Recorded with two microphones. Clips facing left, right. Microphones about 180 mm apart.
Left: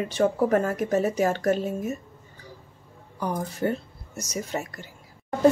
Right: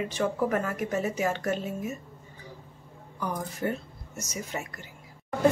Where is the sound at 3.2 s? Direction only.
30° left (ahead or behind).